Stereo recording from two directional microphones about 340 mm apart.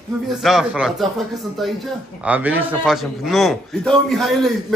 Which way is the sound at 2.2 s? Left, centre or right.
Centre.